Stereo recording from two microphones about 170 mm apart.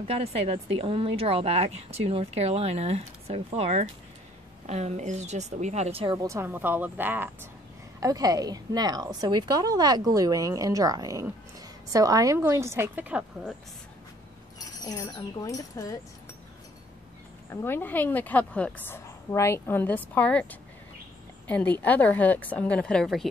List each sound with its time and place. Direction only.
0.0 s a woman's voice: 35° right (ahead or behind)
6.1 s a woman's voice: 15° right (ahead or behind)
14.9 s speech: 20° left (ahead or behind)
17.5 s a woman's voice: 15° left (ahead or behind)